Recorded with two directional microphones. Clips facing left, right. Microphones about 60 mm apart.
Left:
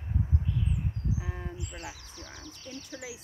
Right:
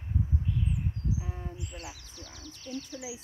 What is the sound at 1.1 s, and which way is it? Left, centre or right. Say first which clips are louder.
Speech: left 1 dB; left.